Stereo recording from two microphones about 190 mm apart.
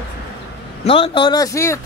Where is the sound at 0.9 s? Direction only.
30° left (ahead or behind).